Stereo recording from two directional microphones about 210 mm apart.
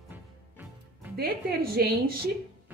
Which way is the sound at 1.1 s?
45° right (ahead or behind).